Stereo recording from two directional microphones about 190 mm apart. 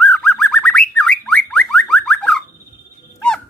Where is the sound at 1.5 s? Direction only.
5° left (ahead or behind).